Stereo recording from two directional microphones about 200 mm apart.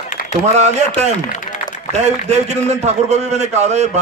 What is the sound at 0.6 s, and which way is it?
Speech, 35° right (ahead or behind).